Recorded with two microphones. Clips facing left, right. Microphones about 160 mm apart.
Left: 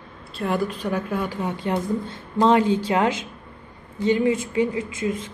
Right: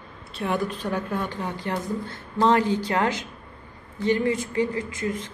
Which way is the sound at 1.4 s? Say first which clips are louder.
Left 4 dB; 20° left (ahead or behind).